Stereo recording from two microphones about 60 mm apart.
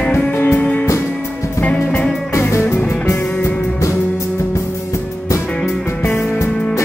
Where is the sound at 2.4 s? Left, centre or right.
Left.